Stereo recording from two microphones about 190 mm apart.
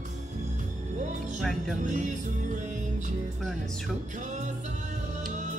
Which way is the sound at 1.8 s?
40° right (ahead or behind).